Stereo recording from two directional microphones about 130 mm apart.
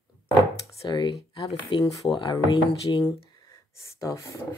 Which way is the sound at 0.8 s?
30° left (ahead or behind).